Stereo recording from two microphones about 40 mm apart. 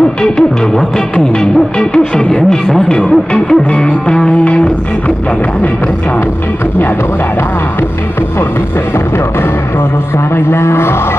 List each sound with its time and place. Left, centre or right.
0.2 s music: centre
10.3 s a man's voice: left